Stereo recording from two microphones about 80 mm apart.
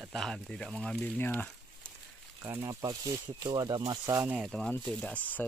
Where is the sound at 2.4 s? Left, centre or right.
Right.